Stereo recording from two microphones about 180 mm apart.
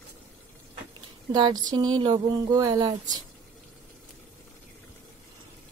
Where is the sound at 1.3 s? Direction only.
25° right (ahead or behind).